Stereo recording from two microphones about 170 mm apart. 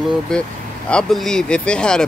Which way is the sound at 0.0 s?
5° left (ahead or behind).